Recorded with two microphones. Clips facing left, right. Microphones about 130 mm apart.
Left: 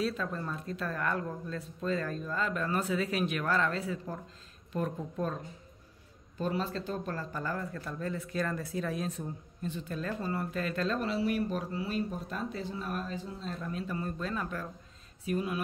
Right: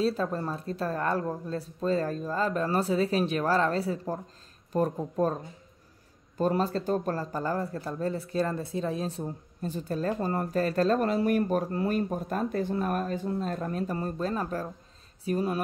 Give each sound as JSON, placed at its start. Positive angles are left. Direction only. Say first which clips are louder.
{"t": 0.0, "sound": "speech", "louder": "right 6 dB", "side_deg": -35}